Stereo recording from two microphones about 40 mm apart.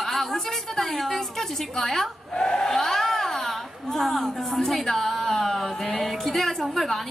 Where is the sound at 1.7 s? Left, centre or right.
Centre.